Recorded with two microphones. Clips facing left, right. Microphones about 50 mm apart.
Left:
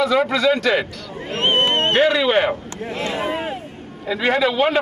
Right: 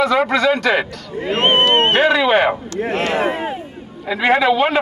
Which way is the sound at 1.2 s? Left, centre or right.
Right.